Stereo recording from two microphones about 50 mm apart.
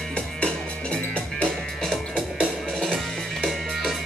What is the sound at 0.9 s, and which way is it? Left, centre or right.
Music, left.